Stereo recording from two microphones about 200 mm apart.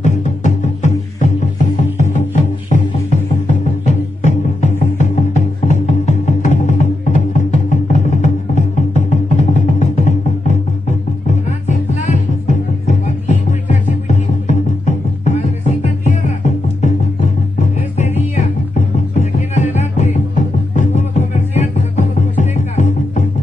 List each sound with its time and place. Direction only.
0.0 s music: 35° left (ahead or behind)
19.5 s music: 35° left (ahead or behind)